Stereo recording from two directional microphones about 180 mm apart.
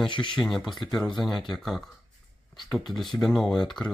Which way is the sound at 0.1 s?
25° left (ahead or behind).